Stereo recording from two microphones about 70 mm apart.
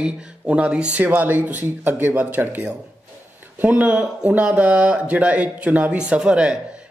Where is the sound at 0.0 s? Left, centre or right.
Centre.